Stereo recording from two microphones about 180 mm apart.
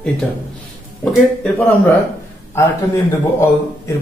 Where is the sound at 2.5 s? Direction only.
15° left (ahead or behind).